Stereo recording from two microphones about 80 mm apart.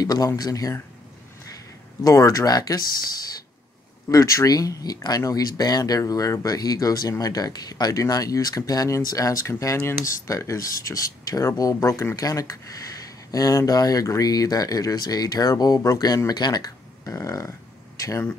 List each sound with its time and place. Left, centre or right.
0.0 s speech: left
2.0 s speech: left
4.1 s speech: left
16.3 s speech: left